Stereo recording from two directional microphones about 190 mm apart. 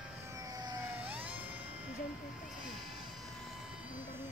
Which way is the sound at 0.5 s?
20° right (ahead or behind).